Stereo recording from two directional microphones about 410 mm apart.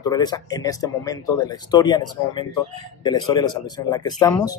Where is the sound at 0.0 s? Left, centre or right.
Centre.